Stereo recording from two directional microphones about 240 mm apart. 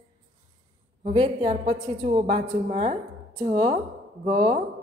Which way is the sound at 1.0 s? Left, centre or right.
Right.